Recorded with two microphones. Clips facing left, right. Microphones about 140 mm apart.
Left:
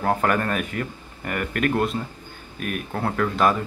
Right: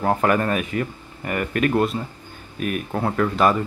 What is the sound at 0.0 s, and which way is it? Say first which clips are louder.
Speech: right 2 dB; 10° right (ahead or behind).